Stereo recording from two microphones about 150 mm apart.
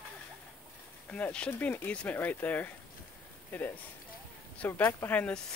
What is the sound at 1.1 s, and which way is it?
Speech, 5° left (ahead or behind).